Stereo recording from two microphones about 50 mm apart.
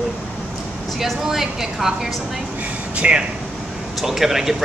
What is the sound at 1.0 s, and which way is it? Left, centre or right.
Speech, centre.